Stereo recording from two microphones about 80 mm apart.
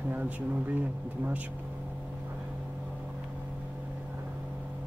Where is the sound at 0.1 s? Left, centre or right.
Right.